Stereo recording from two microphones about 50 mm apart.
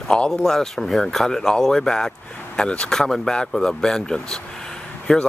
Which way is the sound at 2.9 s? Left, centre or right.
Centre.